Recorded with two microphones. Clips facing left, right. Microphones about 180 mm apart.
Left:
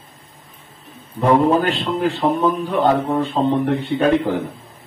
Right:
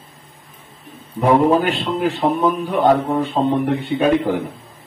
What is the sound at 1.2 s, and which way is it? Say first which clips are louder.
Speech: right 1 dB; 10° right (ahead or behind).